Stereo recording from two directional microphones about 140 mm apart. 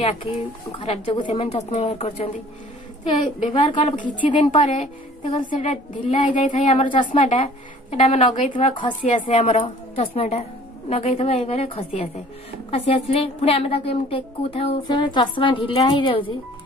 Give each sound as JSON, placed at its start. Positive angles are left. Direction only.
{"t": 0.0, "sound": "speech", "side_deg": 45}
{"t": 5.2, "sound": "a woman's voice", "side_deg": 35}
{"t": 5.6, "sound": "speech", "side_deg": 60}
{"t": 6.8, "sound": "a woman's voice", "side_deg": 35}
{"t": 7.1, "sound": "speech", "side_deg": 55}
{"t": 9.2, "sound": "a woman's voice", "side_deg": 40}
{"t": 14.9, "sound": "a woman's voice", "side_deg": 30}